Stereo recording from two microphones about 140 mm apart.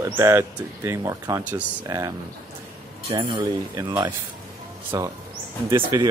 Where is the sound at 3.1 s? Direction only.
35° right (ahead or behind).